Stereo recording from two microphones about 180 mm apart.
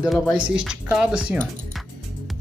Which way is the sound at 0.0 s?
Centre (ahead or behind).